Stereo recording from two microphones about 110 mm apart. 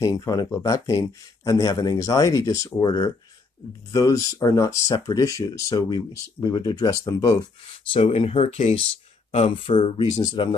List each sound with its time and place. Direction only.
0.0 s speech: 30° left (ahead or behind)
7.9 s speech: 60° left (ahead or behind)